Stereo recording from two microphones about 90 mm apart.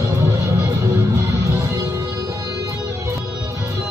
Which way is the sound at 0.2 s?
35° right (ahead or behind).